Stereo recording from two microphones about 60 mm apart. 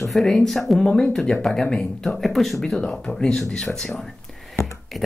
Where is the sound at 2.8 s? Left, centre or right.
Centre.